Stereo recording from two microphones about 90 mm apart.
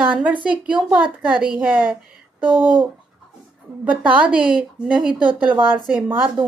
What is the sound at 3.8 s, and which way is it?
Speech, 15° right (ahead or behind).